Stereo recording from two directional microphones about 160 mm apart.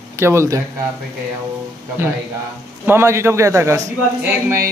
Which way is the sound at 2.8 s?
15° right (ahead or behind).